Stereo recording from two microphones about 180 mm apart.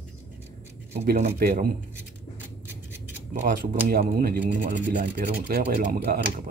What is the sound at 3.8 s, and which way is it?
A man's voice, 55° right (ahead or behind).